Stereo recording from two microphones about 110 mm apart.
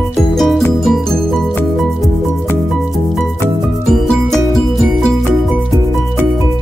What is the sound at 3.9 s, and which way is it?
Music, centre (ahead or behind).